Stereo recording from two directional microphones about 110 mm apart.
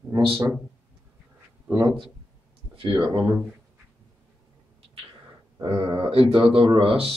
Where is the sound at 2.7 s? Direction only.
55° right (ahead or behind).